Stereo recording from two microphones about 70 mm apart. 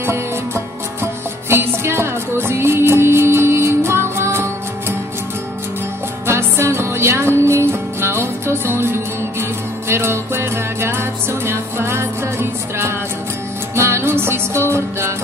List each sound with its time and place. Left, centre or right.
1.5 s music: right
6.2 s music: right